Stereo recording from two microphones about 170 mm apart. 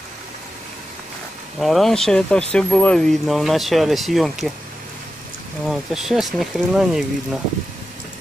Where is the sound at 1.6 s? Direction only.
Centre (ahead or behind).